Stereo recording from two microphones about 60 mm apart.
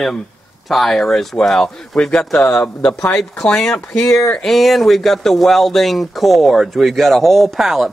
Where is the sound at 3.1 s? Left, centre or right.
Centre.